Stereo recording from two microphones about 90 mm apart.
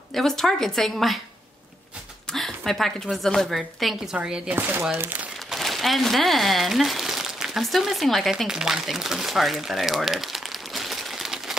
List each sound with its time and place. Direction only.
0.1 s a woman's voice: 5° left (ahead or behind)
2.3 s a woman's voice: 5° left (ahead or behind)
4.6 s speech: 25° right (ahead or behind)
5.5 s speech: centre (ahead or behind)